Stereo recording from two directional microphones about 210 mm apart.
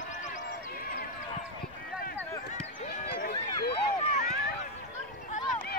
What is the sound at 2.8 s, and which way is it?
Run, 40° left (ahead or behind).